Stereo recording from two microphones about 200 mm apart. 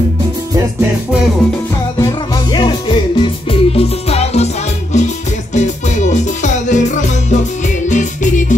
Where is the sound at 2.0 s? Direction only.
20° left (ahead or behind); by 6.8 s 35° left (ahead or behind).